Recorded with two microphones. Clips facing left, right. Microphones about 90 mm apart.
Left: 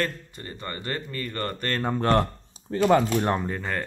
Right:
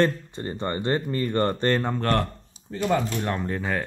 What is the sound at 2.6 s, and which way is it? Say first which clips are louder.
Speech: left 4 dB; 60° left (ahead or behind).